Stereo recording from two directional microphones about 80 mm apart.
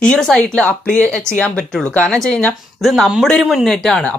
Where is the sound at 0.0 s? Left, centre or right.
Centre.